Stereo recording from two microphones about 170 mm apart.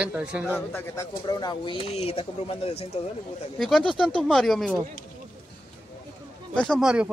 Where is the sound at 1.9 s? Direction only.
35° left (ahead or behind).